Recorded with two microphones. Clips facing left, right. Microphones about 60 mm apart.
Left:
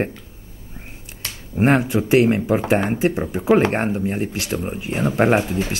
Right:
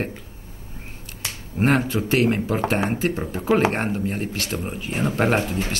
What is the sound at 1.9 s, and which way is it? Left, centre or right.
Speech, left.